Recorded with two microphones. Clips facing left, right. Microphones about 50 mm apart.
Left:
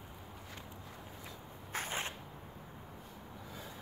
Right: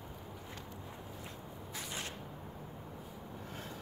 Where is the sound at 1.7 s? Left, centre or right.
Left.